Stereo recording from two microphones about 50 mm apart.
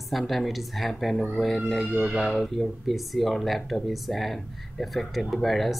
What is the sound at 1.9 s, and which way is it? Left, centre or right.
Speech, centre.